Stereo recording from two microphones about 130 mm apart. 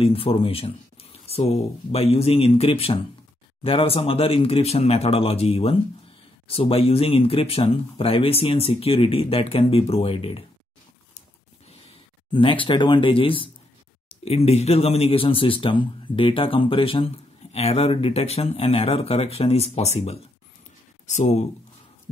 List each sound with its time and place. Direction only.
0.0 s speech: 45° left (ahead or behind)
12.3 s speech: 40° left (ahead or behind); by 21.5 s 65° left (ahead or behind)